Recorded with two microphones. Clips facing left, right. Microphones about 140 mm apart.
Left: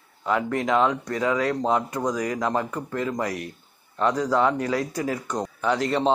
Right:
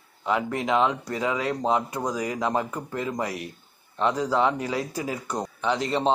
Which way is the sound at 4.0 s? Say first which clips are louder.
Left 1 dB; 25° right (ahead or behind).